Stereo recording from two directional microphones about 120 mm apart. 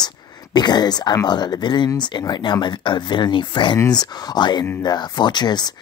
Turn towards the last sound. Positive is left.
turn(degrees=35)  # may be behind; listen again after turning